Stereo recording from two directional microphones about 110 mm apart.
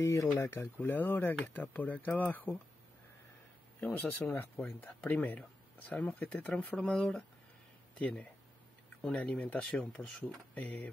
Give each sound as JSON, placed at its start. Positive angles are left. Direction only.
{"t": 0.0, "sound": "speech", "side_deg": 25}
{"t": 3.8, "sound": "speech", "side_deg": 20}
{"t": 10.0, "sound": "speech", "side_deg": -5}
{"t": 10.5, "sound": "speech", "side_deg": 15}